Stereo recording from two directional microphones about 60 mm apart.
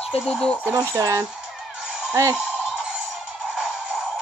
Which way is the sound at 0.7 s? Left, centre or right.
Right.